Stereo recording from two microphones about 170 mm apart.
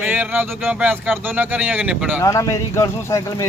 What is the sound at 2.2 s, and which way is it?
Speech, 20° left (ahead or behind).